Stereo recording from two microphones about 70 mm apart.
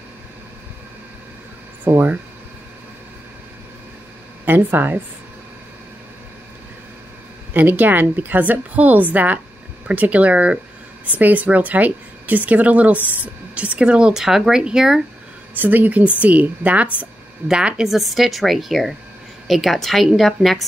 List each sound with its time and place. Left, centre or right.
1.9 s speech: right
4.5 s a woman's voice: right
7.5 s a woman's voice: right; by 15.0 s centre
15.5 s a woman's voice: right; by 20.6 s centre